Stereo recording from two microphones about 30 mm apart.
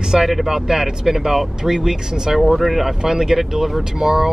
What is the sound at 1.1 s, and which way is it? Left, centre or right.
Speech, centre.